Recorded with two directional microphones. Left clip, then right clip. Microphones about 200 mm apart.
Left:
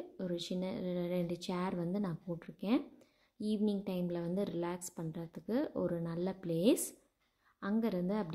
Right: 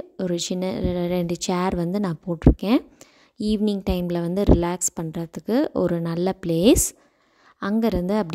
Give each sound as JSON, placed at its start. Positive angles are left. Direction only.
{"t": 0.2, "sound": "a woman's voice", "side_deg": -50}